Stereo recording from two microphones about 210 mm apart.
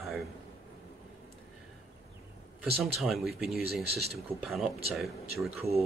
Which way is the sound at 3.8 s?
50° right (ahead or behind).